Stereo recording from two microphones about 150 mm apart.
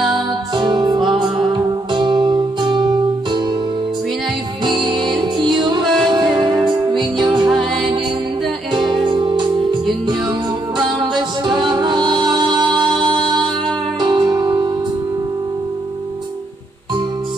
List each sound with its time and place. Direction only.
0.6 s music: 30° right (ahead or behind)
4.6 s music: 30° right (ahead or behind)
8.7 s music: 30° right (ahead or behind)